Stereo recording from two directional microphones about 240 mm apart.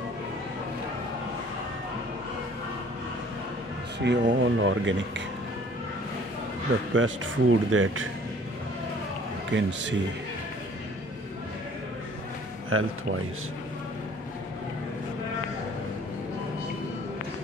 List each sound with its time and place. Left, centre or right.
4.1 s speech: right
6.9 s speech: right
9.5 s speech: right
12.6 s speech: right